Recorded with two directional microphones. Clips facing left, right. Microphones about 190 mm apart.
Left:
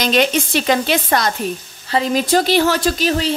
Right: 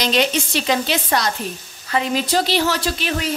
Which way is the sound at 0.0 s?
50° left (ahead or behind).